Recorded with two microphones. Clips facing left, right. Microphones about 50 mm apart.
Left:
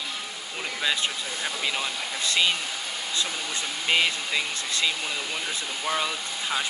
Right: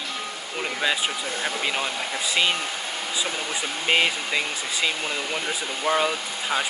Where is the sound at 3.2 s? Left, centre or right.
Right.